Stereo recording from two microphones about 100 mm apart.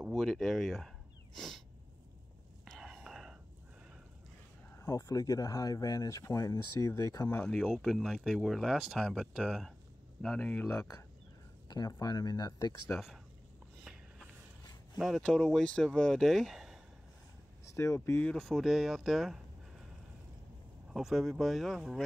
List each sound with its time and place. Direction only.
0.1 s speech: centre (ahead or behind)
2.6 s whispering: centre (ahead or behind)
4.7 s speech: 35° left (ahead or behind)
7.3 s speech: 5° left (ahead or behind)
10.2 s speech: 10° left (ahead or behind)
10.8 s speech: 30° left (ahead or behind)
11.7 s speech: 40° left (ahead or behind)
12.9 s speech: centre (ahead or behind)
13.8 s a sound: centre (ahead or behind)
15.0 s speech: centre (ahead or behind)
17.6 s speech: 30° left (ahead or behind)
18.3 s speech: centre (ahead or behind)
20.9 s speech: centre (ahead or behind)